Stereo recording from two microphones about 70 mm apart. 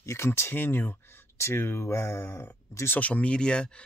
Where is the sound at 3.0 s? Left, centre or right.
Centre.